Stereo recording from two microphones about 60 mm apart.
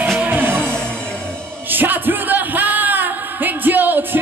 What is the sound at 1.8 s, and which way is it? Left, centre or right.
Music, right.